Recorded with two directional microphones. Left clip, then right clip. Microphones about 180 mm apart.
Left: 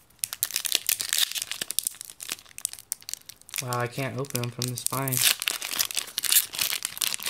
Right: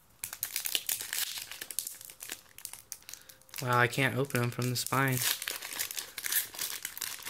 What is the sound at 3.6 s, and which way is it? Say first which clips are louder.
Speech: right 3 dB; 10° right (ahead or behind).